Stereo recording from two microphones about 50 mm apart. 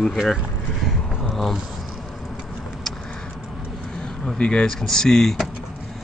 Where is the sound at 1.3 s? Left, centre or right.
Centre.